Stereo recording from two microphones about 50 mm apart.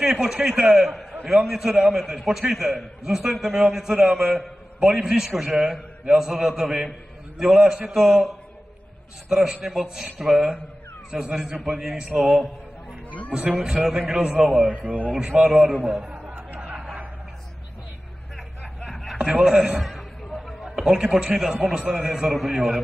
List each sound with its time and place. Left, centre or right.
0.0 s a man's voice: centre
9.3 s a man's voice: centre
13.3 s a man's voice: centre
14.8 s speech: right
15.1 s a man's voice: centre
16.1 s a sound: right
19.4 s a man's voice: centre
19.8 s a sound: centre
20.6 s a man's voice: centre